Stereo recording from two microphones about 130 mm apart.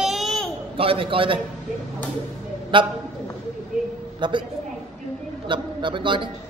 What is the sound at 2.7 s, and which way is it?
Speech, 40° right (ahead or behind).